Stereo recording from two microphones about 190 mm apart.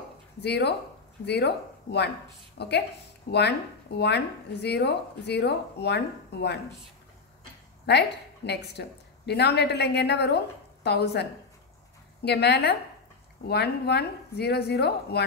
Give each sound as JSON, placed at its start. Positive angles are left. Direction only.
{"t": 0.4, "sound": "speech", "side_deg": 60}
{"t": 8.5, "sound": "speech", "side_deg": 60}